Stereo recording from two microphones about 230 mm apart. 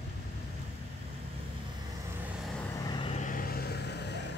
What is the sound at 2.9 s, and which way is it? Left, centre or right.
Vehicle, left.